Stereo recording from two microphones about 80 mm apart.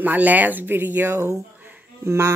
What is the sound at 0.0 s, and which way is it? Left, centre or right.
Speech, right.